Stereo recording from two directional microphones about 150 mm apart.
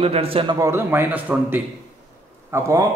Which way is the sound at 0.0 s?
40° right (ahead or behind).